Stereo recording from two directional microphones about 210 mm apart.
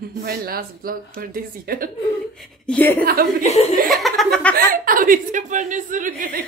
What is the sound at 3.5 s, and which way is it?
Speech, 30° left (ahead or behind).